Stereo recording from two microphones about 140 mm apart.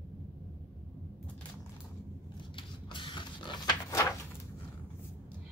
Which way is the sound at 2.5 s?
35° left (ahead or behind).